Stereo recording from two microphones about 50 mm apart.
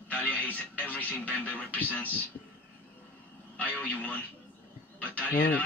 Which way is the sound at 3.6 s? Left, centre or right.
Left.